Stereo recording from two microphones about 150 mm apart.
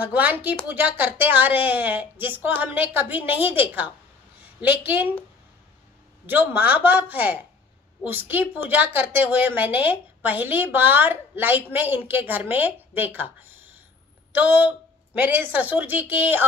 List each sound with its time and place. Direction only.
0.0 s a woman's voice: 10° right (ahead or behind)
6.2 s a woman's voice: 15° right (ahead or behind)